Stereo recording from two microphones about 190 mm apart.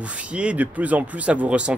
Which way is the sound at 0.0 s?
5° right (ahead or behind).